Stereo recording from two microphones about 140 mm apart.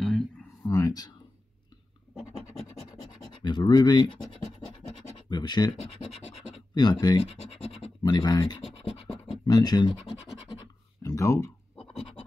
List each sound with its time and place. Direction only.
0.0 s a sound: 5° left (ahead or behind)
0.7 s speech: 25° left (ahead or behind)
3.4 s speech: 30° left (ahead or behind)
7.3 s scratch: 40° left (ahead or behind)
8.6 s scratch: 45° left (ahead or behind)
9.5 s speech: 30° left (ahead or behind)
11.0 s a sound: 25° left (ahead or behind)